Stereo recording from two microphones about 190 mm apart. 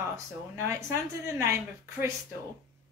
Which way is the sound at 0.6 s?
15° right (ahead or behind).